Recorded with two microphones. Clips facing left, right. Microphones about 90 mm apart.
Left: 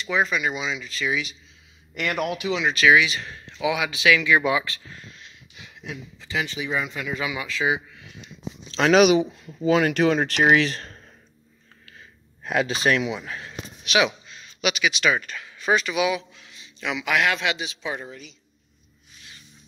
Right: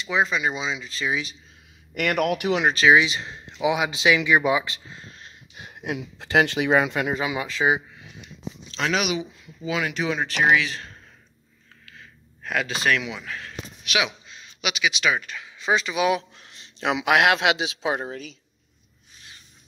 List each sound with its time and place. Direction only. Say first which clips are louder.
0.1 s speech: even; 25° right (ahead or behind)
2.0 s a man's voice: right 3 dB; 55° right (ahead or behind)
2.7 s speech: left 1 dB; 30° right (ahead or behind)
5.0 s a sound: right 1 dB; 40° right (ahead or behind)
5.9 s a man's voice: right 7 dB; 70° right (ahead or behind)
7.2 s speech: right 2 dB; 35° right (ahead or behind)
8.7 s speech: left 8 dB; 60° left (ahead or behind)
9.0 s speech: left 10 dB; 40° left (ahead or behind)
12.4 s a man's voice: left 2 dB; 25° left (ahead or behind)
14.3 s speech: left 4 dB; 15° right (ahead or behind)
15.6 s speech: left 1 dB; 25° right (ahead or behind)
16.1 s a sound: right 3 dB; 40° right (ahead or behind)
17.3 s speech: right 5 dB; 90° right